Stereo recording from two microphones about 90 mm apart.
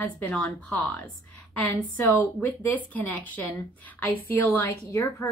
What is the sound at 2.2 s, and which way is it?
Speech, 20° left (ahead or behind).